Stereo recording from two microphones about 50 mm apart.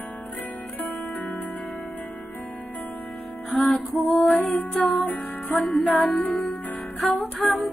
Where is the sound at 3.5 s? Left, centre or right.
Centre.